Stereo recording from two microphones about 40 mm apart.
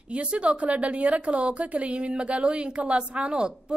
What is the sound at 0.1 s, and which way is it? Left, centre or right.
A woman's voice, right.